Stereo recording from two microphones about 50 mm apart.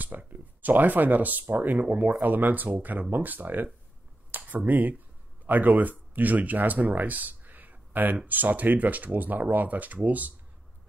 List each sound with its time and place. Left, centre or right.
0.3 s speech: right